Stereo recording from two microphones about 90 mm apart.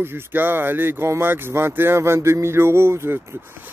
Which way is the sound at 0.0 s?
25° right (ahead or behind).